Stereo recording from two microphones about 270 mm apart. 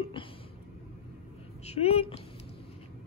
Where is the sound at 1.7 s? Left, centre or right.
Left.